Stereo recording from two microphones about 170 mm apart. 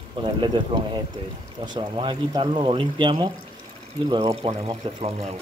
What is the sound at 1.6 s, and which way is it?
Speech, 30° right (ahead or behind).